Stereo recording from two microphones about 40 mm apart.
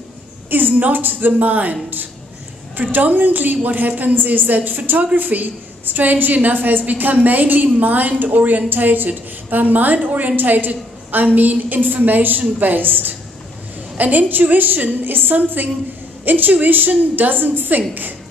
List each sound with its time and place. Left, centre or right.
0.5 s a woman's voice: right